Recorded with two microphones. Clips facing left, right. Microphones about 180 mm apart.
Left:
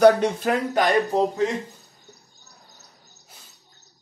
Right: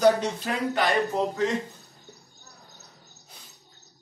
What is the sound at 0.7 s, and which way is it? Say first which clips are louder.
Speech: left 2 dB; 45° left (ahead or behind).